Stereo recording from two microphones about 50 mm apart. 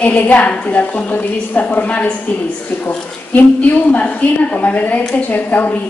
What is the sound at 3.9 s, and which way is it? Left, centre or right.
A woman's voice, left.